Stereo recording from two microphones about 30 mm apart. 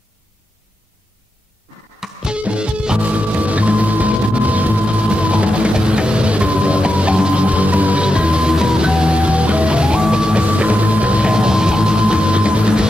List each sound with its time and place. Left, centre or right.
2.0 s music: centre
2.3 s music: right
3.0 s music: right
4.8 s music: right
7.4 s music: right
8.0 s music: right
10.4 s music: right
11.3 s music: right